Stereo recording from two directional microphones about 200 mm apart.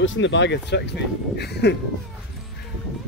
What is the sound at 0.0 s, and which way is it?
Speech, 70° left (ahead or behind).